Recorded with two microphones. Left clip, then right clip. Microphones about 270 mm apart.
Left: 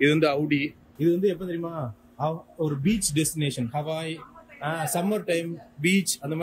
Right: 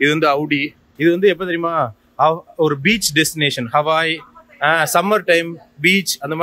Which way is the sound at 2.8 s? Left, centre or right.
Centre.